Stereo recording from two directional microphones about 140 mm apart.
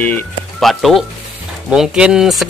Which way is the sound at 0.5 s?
Centre (ahead or behind).